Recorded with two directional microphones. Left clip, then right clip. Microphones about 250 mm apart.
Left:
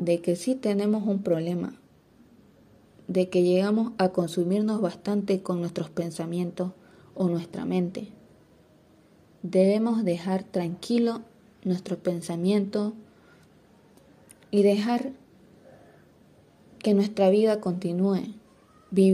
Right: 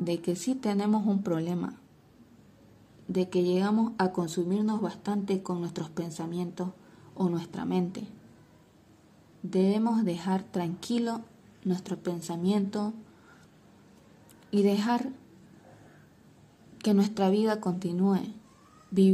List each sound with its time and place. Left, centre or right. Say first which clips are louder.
0.0 s a woman's voice: left 6 dB; centre
3.1 s a woman's voice: left 5 dB; centre
9.5 s a woman's voice: left 5 dB; centre
14.5 s a woman's voice: left 4 dB; centre
16.7 s a woman's voice: left 4 dB; centre